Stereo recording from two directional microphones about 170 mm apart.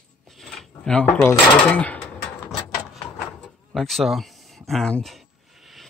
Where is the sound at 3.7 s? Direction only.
Centre (ahead or behind).